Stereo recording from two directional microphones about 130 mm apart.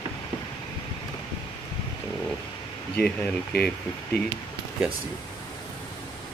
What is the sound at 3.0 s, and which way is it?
Speech, 10° left (ahead or behind).